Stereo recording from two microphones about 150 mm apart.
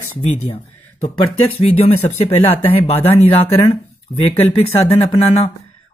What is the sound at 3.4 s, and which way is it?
Speech, 40° left (ahead or behind).